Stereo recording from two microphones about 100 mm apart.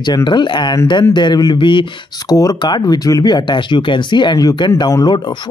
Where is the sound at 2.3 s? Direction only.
40° left (ahead or behind).